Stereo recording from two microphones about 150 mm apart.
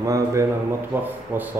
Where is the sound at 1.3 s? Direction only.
10° right (ahead or behind).